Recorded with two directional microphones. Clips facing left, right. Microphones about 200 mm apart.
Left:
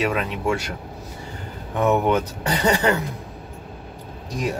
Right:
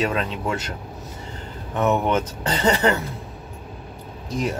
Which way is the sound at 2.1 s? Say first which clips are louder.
Left 1 dB; 10° left (ahead or behind).